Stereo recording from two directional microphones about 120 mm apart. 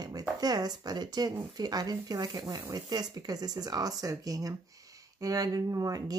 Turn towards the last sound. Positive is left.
turn(degrees=-30)  # may be behind; listen again after turning